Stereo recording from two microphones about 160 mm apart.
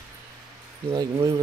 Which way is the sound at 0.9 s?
25° right (ahead or behind).